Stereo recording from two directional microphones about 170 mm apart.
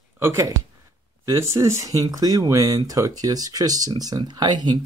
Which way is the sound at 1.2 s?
15° right (ahead or behind).